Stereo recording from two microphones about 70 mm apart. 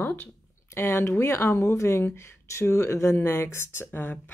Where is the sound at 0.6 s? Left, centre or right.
Left.